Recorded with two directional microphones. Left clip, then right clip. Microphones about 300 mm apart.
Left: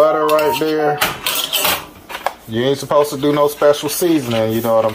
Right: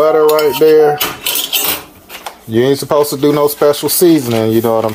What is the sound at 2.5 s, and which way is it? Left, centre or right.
Speech, right.